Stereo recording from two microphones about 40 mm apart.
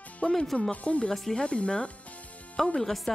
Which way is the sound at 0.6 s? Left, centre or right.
Left.